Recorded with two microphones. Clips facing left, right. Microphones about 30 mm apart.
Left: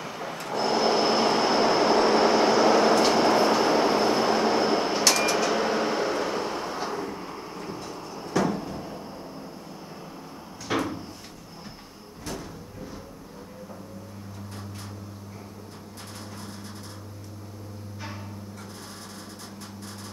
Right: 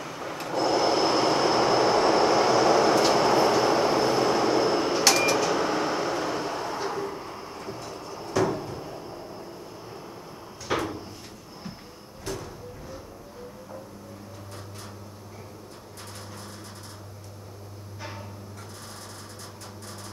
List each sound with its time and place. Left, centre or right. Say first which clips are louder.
0.0 s train: even; centre
5.0 s a sound: right 3 dB; centre
8.4 s cupboard open or close: even; centre
10.7 s door: left 1 dB; centre